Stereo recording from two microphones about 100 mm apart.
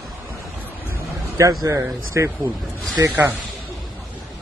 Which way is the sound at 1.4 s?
35° right (ahead or behind).